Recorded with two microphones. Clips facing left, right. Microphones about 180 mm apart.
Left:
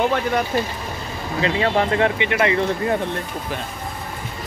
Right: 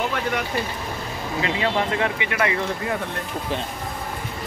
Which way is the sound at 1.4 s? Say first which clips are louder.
Left 4 dB; 35° left (ahead or behind).